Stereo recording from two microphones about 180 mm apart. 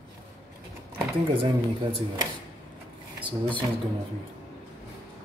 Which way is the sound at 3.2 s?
25° right (ahead or behind).